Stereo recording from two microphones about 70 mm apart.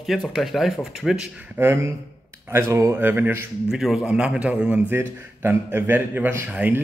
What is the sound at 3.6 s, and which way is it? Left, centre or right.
Speech, centre.